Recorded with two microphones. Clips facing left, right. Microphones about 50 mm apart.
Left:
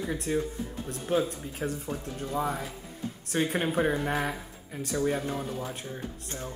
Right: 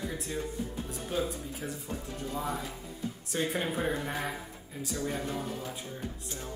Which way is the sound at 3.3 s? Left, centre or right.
Left.